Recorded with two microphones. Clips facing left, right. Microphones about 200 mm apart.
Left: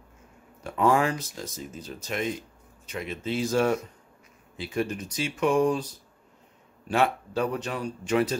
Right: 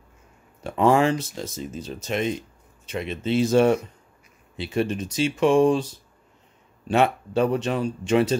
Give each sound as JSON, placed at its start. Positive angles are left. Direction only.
{"t": 0.7, "sound": "speech", "side_deg": -25}
{"t": 6.9, "sound": "speech", "side_deg": -25}